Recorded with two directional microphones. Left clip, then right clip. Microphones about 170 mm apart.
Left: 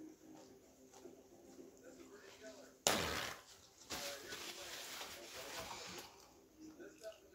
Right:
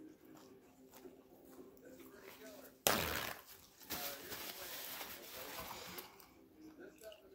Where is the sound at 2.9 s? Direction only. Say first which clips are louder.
Right 1 dB; 45° right (ahead or behind).